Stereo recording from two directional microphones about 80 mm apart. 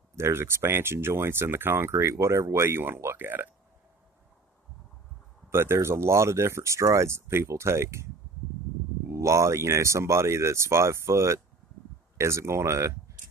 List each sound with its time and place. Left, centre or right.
0.1 s speech: right
5.5 s speech: right
9.1 s speech: right